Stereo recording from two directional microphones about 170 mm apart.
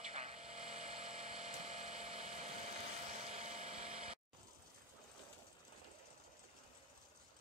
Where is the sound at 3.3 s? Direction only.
40° right (ahead or behind).